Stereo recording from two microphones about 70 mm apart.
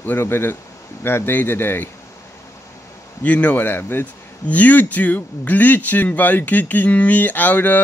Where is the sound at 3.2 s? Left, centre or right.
Left.